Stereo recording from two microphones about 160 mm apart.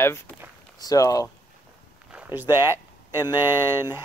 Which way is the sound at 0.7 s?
20° left (ahead or behind).